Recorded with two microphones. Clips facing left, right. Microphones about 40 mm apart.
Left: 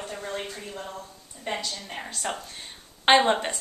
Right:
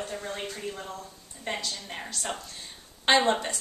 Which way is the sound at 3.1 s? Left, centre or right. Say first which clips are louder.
Left 3 dB; left.